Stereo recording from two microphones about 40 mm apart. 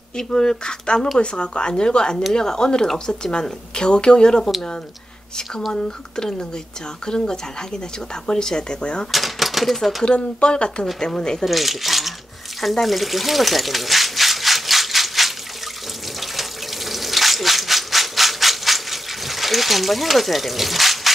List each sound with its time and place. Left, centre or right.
0.2 s speech: centre
5.7 s speech: centre
9.1 s speech: centre
10.0 s speech: left
11.4 s speech: centre
12.8 s a sound: centre